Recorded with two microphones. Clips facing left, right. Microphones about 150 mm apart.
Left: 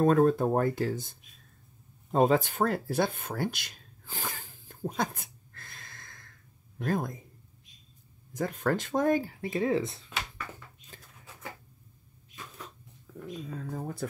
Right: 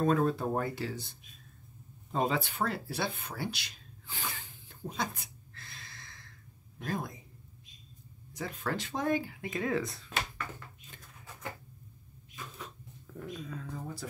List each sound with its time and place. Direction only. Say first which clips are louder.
0.0 s speech: left 5 dB; 45° left (ahead or behind)
2.1 s a sound: left 7 dB; 45° left (ahead or behind)
6.8 s speech: left 6 dB; 50° left (ahead or behind)
8.3 s speech: left 7 dB; 50° left (ahead or behind); by 10.0 s 25° left (ahead or behind)
13.3 s speech: left 5 dB; 30° left (ahead or behind); by 14.0 s 50° left (ahead or behind)